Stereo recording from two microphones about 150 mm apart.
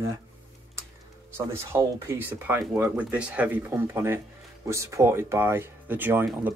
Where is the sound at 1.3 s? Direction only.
15° right (ahead or behind).